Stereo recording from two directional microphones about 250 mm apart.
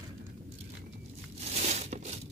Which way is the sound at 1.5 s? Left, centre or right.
Right.